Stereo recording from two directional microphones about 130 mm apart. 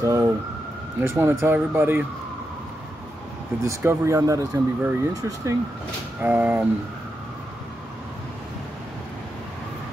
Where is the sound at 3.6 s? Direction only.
20° right (ahead or behind).